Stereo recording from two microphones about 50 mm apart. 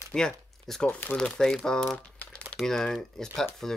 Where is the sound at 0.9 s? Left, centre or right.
Left.